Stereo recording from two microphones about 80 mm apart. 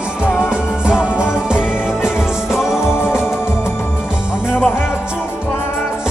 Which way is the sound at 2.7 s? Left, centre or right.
Left.